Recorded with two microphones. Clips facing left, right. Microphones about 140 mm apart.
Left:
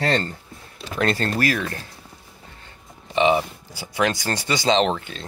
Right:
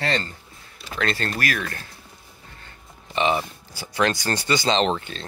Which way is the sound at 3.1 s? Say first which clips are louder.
Left 4 dB; 15° left (ahead or behind).